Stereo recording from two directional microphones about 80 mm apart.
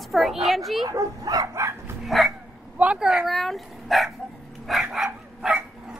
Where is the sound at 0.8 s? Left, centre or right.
Right.